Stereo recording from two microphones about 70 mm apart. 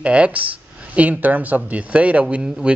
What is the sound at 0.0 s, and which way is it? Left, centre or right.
A man's voice, centre.